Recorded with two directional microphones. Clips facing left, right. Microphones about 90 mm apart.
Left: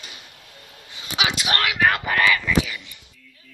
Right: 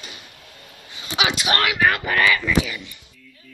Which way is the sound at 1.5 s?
10° right (ahead or behind).